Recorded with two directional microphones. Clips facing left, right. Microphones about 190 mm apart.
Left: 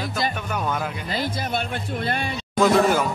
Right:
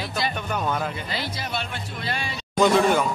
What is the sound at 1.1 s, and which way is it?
Speech, 50° left (ahead or behind).